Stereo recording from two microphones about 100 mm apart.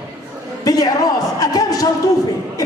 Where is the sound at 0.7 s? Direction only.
40° left (ahead or behind).